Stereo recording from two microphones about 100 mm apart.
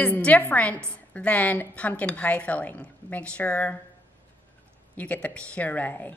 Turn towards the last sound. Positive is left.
turn(degrees=20)  # may be behind; listen again after turning